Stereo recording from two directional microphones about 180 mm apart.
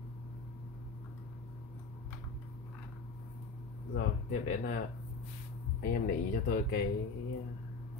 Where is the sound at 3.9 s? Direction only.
50° left (ahead or behind).